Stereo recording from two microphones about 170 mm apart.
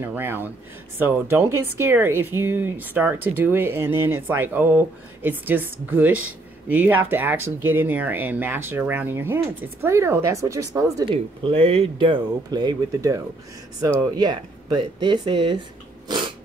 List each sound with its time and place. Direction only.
0.0 s speech: 10° right (ahead or behind)
11.4 s speech: 35° right (ahead or behind)